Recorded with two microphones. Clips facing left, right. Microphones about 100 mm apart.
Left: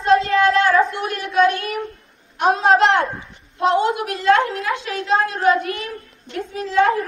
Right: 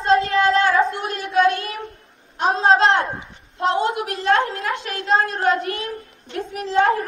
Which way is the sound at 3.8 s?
30° right (ahead or behind).